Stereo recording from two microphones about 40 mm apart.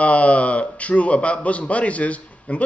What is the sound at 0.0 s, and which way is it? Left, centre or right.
Speech, left.